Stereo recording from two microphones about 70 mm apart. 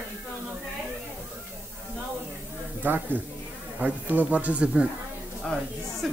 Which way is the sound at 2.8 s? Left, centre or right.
Right.